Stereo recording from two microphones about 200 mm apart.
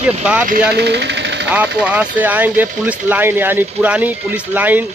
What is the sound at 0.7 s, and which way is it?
Speech, 55° right (ahead or behind).